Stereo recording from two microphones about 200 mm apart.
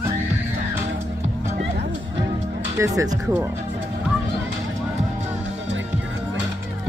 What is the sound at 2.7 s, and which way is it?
Speech, 15° right (ahead or behind).